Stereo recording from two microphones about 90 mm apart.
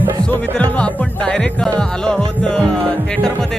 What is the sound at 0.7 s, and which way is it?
Music, 10° left (ahead or behind).